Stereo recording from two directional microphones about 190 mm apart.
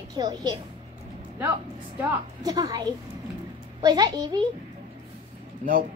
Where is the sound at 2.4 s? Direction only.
20° right (ahead or behind).